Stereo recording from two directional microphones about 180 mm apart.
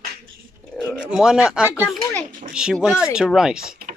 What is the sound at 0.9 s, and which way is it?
Speech, 5° right (ahead or behind).